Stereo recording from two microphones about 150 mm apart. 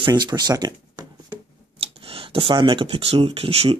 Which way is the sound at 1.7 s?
40° right (ahead or behind).